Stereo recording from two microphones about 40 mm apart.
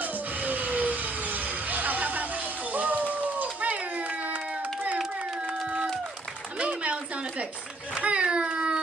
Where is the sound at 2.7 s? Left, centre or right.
Right.